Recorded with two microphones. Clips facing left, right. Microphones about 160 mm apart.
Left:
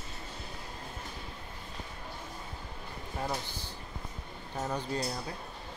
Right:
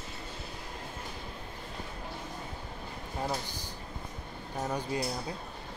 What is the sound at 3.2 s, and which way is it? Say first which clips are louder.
Speech: right 1 dB; 10° right (ahead or behind).